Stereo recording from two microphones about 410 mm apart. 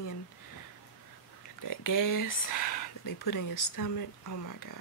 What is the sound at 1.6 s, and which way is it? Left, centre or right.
Speech, left.